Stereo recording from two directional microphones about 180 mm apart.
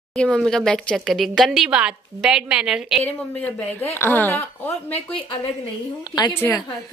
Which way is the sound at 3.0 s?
10° left (ahead or behind).